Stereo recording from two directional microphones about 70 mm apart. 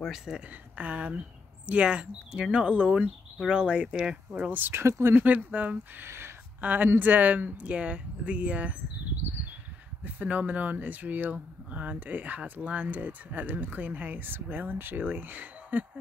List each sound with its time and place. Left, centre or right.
0.0 s speech: centre
0.7 s speech: centre
4.8 s speech: right
5.1 s speech: right
6.0 s speech: right
6.6 s speech: right
10.0 s speech: right